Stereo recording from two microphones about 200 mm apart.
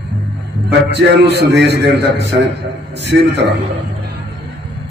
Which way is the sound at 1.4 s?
55° right (ahead or behind).